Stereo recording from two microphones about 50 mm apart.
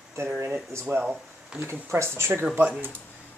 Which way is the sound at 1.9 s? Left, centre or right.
Right.